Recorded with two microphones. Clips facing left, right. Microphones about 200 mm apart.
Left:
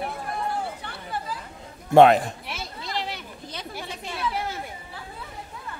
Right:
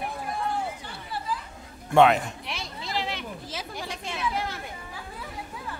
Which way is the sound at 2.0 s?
35° left (ahead or behind).